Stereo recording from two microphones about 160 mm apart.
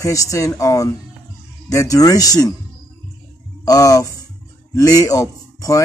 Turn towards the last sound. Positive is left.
turn(degrees=20)  # may be behind; listen again after turning